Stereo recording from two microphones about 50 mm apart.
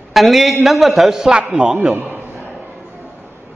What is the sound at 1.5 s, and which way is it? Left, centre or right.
Speech, right.